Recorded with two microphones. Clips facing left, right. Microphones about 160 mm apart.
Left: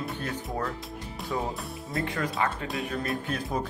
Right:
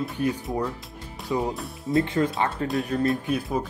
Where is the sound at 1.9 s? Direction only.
25° right (ahead or behind).